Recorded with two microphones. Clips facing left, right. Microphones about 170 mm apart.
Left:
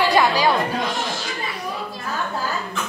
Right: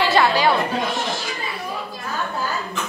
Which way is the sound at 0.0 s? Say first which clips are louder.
Even; 15° left (ahead or behind).